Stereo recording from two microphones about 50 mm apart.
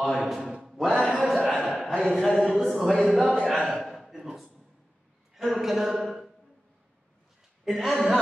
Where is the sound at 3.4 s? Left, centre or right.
Centre.